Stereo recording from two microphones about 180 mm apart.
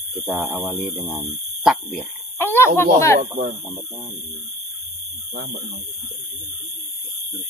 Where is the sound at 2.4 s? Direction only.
10° left (ahead or behind).